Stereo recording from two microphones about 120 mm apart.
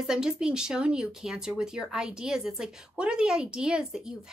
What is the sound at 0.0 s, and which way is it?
Speech, 5° right (ahead or behind).